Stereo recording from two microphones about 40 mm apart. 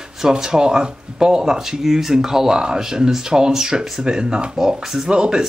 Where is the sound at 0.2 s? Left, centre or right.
Centre.